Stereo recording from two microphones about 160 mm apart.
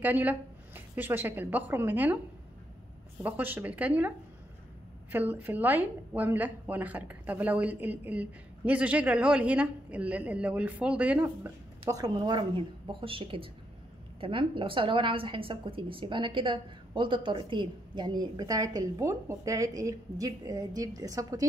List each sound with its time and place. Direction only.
0.0 s a woman's voice: 10° right (ahead or behind)
3.2 s a woman's voice: 10° right (ahead or behind)
5.1 s a woman's voice: 10° right (ahead or behind)